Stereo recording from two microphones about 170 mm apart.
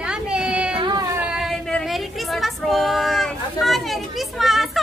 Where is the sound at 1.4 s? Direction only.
Centre (ahead or behind).